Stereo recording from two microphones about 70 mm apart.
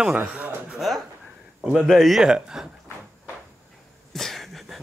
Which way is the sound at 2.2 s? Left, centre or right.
Centre.